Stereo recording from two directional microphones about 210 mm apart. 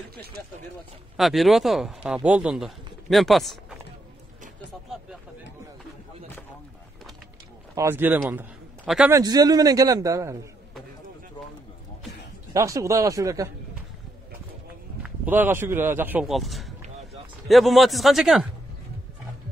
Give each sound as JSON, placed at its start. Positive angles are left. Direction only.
{"t": 1.1, "sound": "speech", "side_deg": 0}
{"t": 7.7, "sound": "speech", "side_deg": -10}
{"t": 8.3, "sound": "a sound", "side_deg": -5}
{"t": 9.1, "sound": "speech", "side_deg": -20}
{"t": 12.5, "sound": "speech", "side_deg": -15}
{"t": 15.0, "sound": "speech", "side_deg": -10}